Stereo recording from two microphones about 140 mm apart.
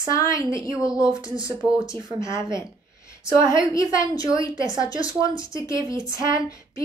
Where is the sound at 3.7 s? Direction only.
25° left (ahead or behind).